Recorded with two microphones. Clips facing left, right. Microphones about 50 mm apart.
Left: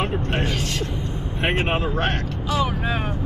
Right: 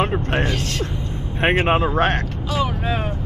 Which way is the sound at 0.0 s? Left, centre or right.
Right.